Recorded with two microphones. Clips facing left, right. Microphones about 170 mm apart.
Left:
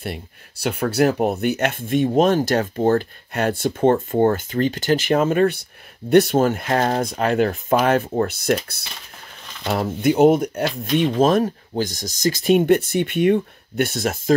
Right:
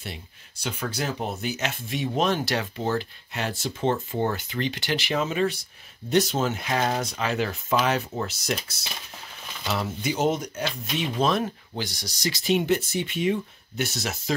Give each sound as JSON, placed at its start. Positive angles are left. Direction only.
{"t": 0.0, "sound": "speech", "side_deg": 60}